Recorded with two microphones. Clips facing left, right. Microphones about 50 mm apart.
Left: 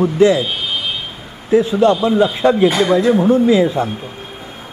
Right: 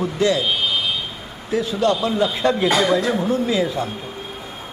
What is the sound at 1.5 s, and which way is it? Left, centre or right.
Speech, left.